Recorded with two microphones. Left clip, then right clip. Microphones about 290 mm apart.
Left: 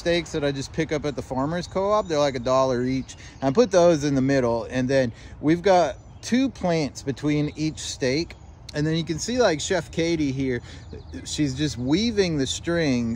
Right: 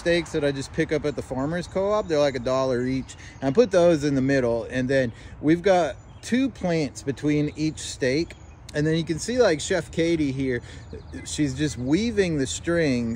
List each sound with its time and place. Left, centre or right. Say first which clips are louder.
0.0 s speech: right 1 dB; centre